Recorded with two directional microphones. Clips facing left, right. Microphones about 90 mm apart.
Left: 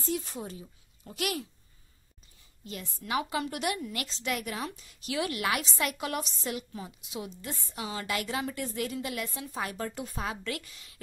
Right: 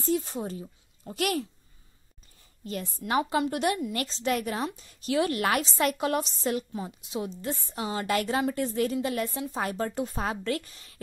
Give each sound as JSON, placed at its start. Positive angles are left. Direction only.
{"t": 0.0, "sound": "speech", "side_deg": -35}
{"t": 2.6, "sound": "a woman's voice", "side_deg": -45}